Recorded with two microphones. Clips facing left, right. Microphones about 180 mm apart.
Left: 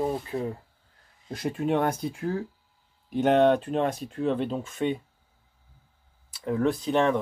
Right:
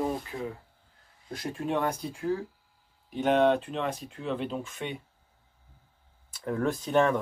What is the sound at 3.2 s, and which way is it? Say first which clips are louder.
Speech: left 3 dB; 50° left (ahead or behind).